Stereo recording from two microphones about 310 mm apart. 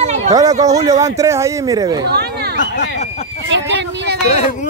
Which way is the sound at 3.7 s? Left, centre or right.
Right.